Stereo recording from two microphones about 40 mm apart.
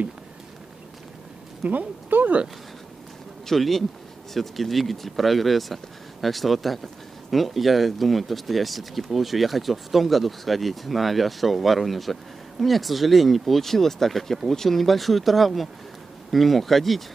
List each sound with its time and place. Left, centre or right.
1.6 s speech: right
3.4 s speech: centre